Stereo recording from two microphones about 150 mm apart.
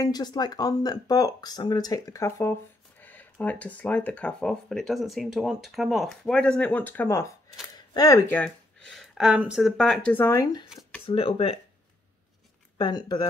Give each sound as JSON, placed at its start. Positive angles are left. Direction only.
{"t": 0.0, "sound": "speech", "side_deg": 25}
{"t": 8.9, "sound": "speech", "side_deg": 0}
{"t": 10.7, "sound": "a sound", "side_deg": 0}
{"t": 11.1, "sound": "speech", "side_deg": 40}
{"t": 12.7, "sound": "speech", "side_deg": 30}